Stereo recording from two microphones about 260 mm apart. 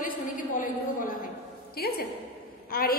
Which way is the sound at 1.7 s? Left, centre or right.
Left.